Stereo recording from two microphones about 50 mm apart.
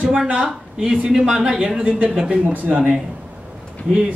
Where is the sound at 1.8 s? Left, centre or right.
Right.